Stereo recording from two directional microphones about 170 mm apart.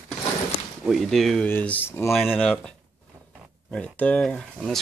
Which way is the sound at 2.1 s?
Centre (ahead or behind).